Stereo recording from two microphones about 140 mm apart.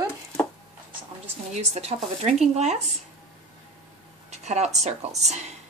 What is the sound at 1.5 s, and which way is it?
Speech, 50° right (ahead or behind).